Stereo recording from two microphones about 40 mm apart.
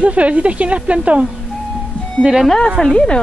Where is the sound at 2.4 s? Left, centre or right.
Centre.